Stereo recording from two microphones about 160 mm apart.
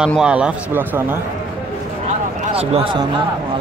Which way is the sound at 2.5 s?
35° right (ahead or behind).